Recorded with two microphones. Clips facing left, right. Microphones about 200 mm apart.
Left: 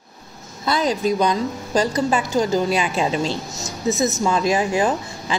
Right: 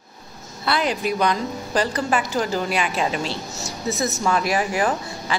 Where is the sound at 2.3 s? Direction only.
25° left (ahead or behind).